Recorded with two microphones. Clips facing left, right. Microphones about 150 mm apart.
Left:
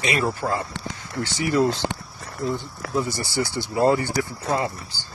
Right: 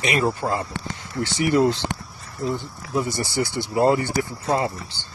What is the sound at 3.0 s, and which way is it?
Speech, 20° right (ahead or behind).